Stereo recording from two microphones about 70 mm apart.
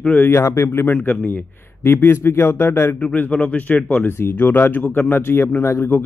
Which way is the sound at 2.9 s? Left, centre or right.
Left.